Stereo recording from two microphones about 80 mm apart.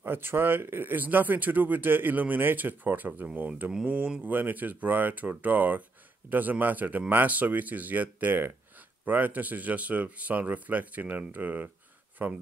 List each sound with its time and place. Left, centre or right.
0.0 s speech: right